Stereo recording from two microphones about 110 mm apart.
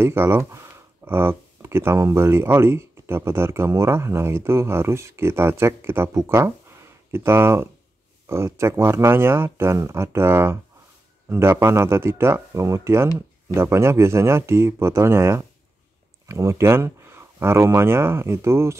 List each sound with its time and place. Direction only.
0.0 s speech: 20° right (ahead or behind)